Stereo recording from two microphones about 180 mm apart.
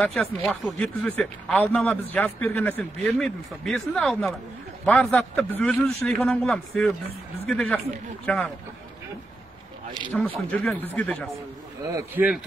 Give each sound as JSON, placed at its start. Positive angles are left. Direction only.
{"t": 0.0, "sound": "speech", "side_deg": 0}
{"t": 10.1, "sound": "speech", "side_deg": 10}
{"t": 11.9, "sound": "speech", "side_deg": -10}